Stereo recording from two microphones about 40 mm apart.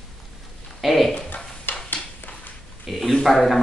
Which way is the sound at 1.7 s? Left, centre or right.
Left.